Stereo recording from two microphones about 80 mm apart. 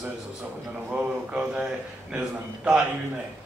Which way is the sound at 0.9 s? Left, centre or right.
Centre.